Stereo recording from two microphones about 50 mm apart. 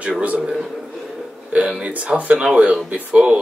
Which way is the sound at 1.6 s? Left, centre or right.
Right.